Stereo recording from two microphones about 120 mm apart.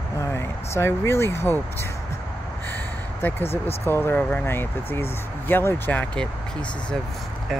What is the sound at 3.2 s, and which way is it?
Speech, 15° left (ahead or behind).